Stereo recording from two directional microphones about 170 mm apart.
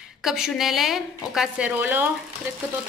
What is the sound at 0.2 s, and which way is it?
A woman's voice, centre (ahead or behind).